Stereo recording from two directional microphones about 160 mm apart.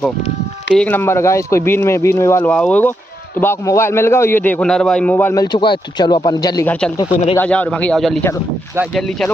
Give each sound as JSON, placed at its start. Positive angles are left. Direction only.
{"t": 0.7, "sound": "a man's voice", "side_deg": 10}
{"t": 5.4, "sound": "speech", "side_deg": 30}
{"t": 6.6, "sound": "a man's voice", "side_deg": 10}
{"t": 7.1, "sound": "speech", "side_deg": 40}
{"t": 7.3, "sound": "a man's voice", "side_deg": 10}